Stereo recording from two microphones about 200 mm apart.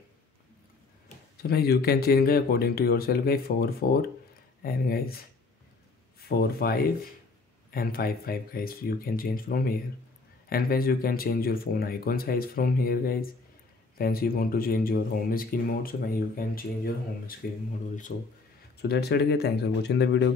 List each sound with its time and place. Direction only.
1.4 s speech: 50° left (ahead or behind)
6.2 s speech: 50° left (ahead or behind)
18.8 s speech: 55° left (ahead or behind)